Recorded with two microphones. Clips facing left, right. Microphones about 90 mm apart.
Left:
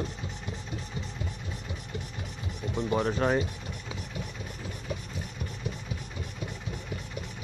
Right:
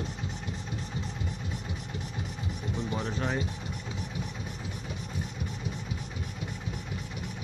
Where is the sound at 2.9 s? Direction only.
60° left (ahead or behind).